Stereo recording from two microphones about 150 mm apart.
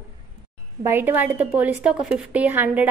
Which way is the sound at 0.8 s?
15° right (ahead or behind).